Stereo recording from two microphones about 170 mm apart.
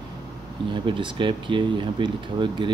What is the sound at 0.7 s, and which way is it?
Speech, 30° right (ahead or behind).